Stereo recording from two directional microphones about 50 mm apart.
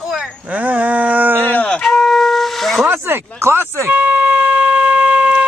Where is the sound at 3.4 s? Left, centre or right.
Right.